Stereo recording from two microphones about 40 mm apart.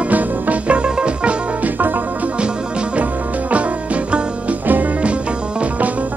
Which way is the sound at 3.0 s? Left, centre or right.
Right.